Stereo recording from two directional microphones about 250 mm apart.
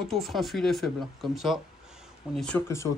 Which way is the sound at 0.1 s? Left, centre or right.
Centre.